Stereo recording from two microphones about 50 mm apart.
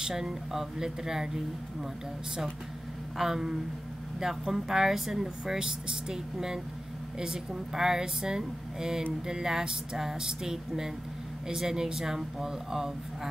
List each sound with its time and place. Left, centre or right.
0.0 s speech: centre
3.2 s speech: centre